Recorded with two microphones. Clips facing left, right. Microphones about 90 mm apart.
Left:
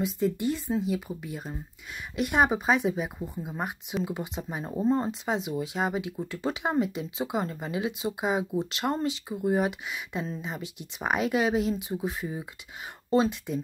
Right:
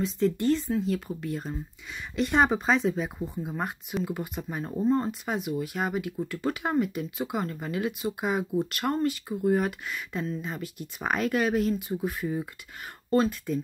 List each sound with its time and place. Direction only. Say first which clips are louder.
0.0 s speech: right 2 dB; 15° left (ahead or behind)
4.1 s speech: right 1 dB; 20° left (ahead or behind)